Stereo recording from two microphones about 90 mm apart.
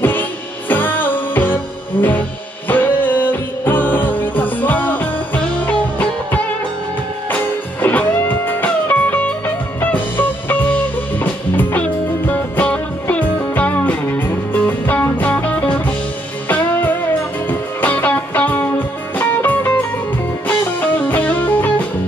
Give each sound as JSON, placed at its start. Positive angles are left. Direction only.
{"t": 0.0, "sound": "music", "side_deg": 20}